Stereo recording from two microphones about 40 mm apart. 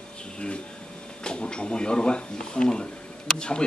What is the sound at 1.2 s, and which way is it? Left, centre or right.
Speech, left.